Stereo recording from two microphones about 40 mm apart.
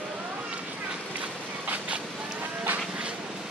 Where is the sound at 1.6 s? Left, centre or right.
Right.